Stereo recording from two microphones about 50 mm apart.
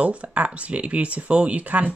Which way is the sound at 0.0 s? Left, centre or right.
Right.